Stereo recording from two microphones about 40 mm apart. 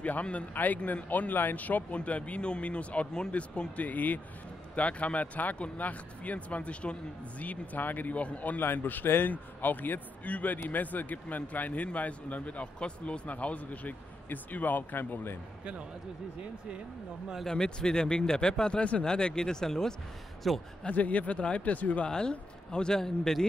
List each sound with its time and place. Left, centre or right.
0.0 s speech: left
0.8 s speech: left
3.1 s speech: centre
3.3 s speech: left
8.6 s speech: left
9.3 s speech: left
17.5 s speech: centre
20.4 s a man's voice: centre
20.9 s speech: left
22.0 s speech: left